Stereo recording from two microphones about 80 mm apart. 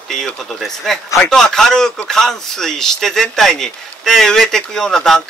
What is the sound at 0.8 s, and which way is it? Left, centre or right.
A man's voice, centre.